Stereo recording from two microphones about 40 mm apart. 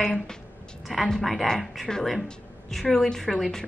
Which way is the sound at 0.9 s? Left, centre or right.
Centre.